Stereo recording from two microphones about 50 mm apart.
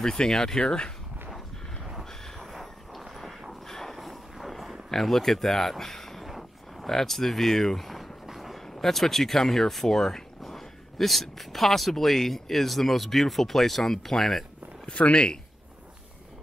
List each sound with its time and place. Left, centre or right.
0.0 s speech: centre
2.0 s train: centre
3.6 s a sound: centre
4.8 s speech: centre
6.2 s a sound: centre
8.6 s speech: centre
14.9 s speech: left